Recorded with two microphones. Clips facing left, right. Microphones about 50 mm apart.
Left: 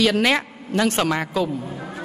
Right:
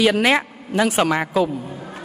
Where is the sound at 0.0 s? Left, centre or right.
Centre.